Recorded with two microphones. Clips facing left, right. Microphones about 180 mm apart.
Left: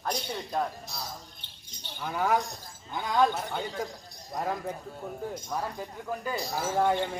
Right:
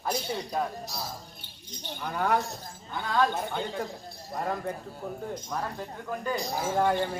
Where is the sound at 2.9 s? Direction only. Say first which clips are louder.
Left 1 dB; 15° left (ahead or behind).